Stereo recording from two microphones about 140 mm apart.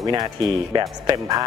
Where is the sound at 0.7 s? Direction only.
30° right (ahead or behind).